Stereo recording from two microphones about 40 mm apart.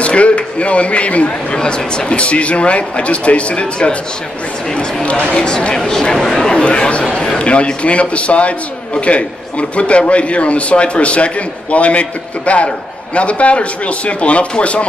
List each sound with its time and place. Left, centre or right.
0.0 s a man's voice: left
1.6 s a man's voice: left
5.0 s speech: left
5.8 s speech: centre
6.6 s a man's voice: left